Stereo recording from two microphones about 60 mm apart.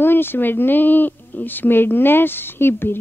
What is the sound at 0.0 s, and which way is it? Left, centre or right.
A woman's voice, left.